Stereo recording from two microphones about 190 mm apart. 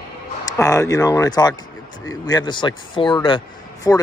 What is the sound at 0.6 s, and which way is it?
Speech, 15° left (ahead or behind).